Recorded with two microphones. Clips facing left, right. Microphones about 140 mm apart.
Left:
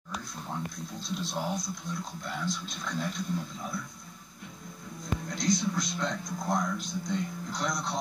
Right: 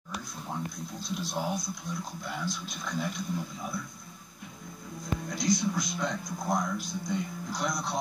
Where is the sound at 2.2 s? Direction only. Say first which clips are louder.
Left 2 dB; 5° right (ahead or behind).